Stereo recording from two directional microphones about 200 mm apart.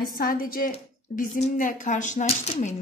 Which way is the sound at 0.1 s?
45° left (ahead or behind).